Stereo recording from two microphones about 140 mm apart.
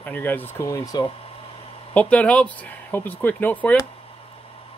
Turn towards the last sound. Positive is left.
turn(degrees=10)  # may be behind; listen again after turning